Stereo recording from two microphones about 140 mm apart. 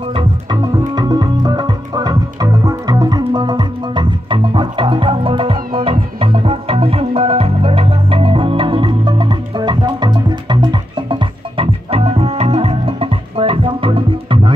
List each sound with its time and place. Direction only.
0.1 s organ: 30° right (ahead or behind)